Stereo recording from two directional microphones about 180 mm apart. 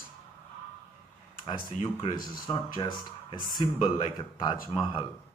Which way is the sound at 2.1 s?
25° left (ahead or behind).